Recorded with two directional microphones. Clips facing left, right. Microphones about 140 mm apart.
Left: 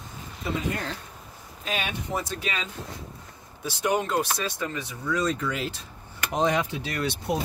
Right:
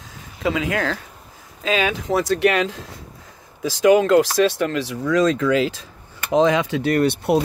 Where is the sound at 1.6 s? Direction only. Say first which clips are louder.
Right 10 dB; 90° right.